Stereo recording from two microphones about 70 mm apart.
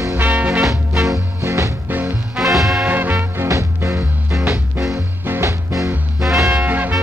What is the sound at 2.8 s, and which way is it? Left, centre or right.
Swing music, right.